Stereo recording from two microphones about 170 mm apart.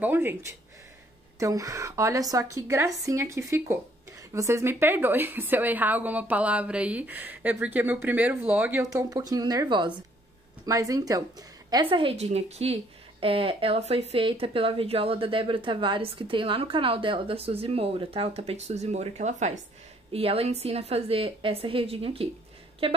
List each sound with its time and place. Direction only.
0.0 s a woman's voice: 10° right (ahead or behind)
9.1 s speech: 20° right (ahead or behind)
11.7 s speech: 30° right (ahead or behind)